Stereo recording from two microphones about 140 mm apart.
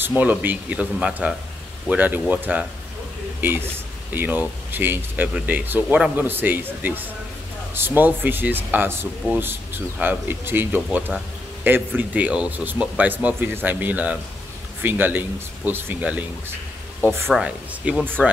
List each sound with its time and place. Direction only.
0.1 s speech: 10° right (ahead or behind)